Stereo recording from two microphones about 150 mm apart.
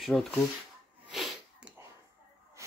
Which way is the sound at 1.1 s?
Centre (ahead or behind).